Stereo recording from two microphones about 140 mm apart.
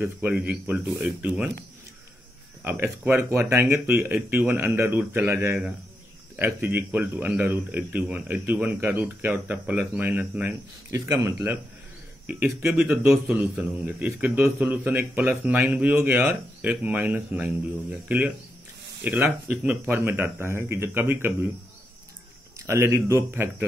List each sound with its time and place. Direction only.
0.3 s a man's voice: 10° right (ahead or behind)
2.6 s a man's voice: 15° right (ahead or behind)
22.7 s a man's voice: 20° right (ahead or behind)